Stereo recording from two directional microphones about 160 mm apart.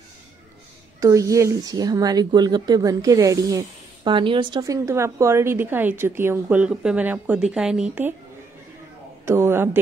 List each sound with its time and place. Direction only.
1.0 s speech: 20° right (ahead or behind)
9.2 s a man's voice: 15° right (ahead or behind)